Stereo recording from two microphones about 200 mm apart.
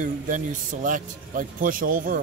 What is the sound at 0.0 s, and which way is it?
Speech, 40° right (ahead or behind).